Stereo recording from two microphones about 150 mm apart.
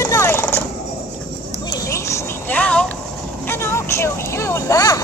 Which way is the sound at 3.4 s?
15° left (ahead or behind).